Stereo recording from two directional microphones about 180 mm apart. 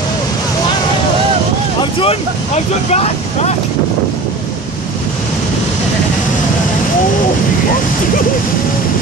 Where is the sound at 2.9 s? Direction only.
35° left (ahead or behind).